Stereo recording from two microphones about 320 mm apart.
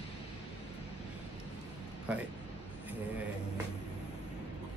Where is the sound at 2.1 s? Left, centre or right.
Centre.